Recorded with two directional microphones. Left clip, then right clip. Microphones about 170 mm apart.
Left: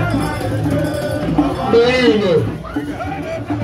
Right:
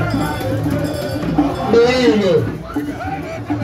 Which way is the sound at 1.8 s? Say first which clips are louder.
Right 1 dB; 25° left (ahead or behind).